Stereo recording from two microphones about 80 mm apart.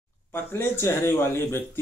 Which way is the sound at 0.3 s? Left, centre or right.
Left.